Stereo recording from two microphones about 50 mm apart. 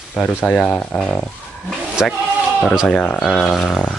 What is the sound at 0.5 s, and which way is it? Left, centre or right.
Speech, left.